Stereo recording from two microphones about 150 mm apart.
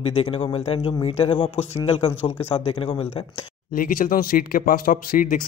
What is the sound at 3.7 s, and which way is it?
Speech, 70° left (ahead or behind).